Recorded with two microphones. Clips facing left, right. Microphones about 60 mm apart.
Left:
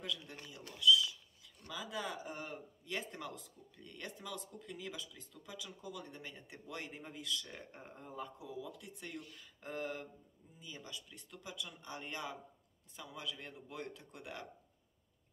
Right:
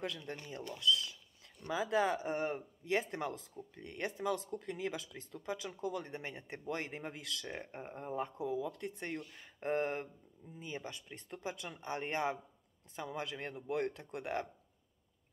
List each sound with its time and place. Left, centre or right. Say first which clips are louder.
0.0 s speech: right 4 dB; right
7.5 s speech: right 7 dB; right
8.5 s speech: right 9 dB; right
9.4 s speech: right 9 dB; right
12.9 s speech: right 6 dB; right